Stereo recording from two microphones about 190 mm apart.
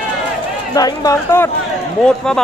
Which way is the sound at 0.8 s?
20° left (ahead or behind).